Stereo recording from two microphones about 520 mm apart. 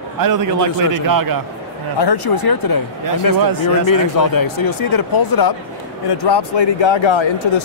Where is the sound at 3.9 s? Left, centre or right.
Left.